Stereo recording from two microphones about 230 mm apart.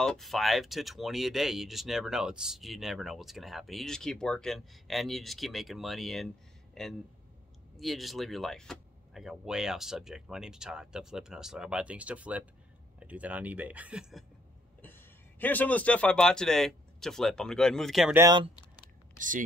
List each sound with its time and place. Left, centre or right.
0.0 s speech: centre
14.8 s a man's voice: centre
18.2 s speech: centre
19.1 s speech: right